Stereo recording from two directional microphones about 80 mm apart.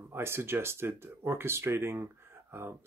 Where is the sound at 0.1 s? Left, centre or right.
Right.